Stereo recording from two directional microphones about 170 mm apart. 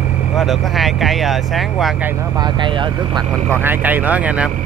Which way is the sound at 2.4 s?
25° right (ahead or behind).